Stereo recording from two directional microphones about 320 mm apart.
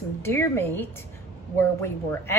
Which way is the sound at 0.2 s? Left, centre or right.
Centre.